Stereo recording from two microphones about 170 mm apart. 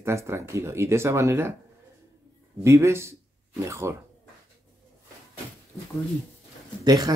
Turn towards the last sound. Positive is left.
turn(degrees=-25)  # may be behind; listen again after turning